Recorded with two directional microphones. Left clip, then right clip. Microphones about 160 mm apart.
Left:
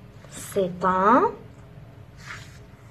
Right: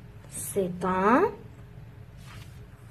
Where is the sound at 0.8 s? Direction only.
40° right (ahead or behind).